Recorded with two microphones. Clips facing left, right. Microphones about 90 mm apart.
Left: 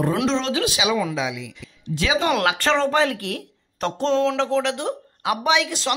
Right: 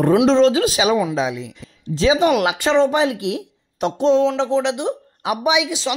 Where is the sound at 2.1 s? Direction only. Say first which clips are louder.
Right 4 dB; 15° right (ahead or behind).